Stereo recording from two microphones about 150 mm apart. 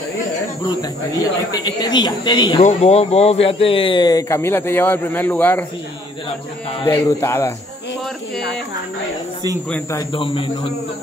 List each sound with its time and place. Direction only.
0.7 s a man's voice: 25° left (ahead or behind)
2.6 s a man's voice: 45° left (ahead or behind); by 5.7 s 10° left (ahead or behind)
6.9 s a man's voice: 20° left (ahead or behind)
10.1 s a man's voice: 35° left (ahead or behind)